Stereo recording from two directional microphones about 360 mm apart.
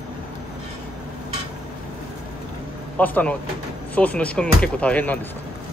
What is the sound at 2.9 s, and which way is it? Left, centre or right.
Speech, centre.